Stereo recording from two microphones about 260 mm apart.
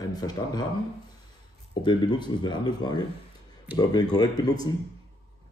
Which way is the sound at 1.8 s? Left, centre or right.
Centre.